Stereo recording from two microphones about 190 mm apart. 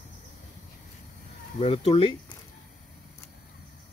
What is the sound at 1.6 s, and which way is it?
Speech, 30° left (ahead or behind).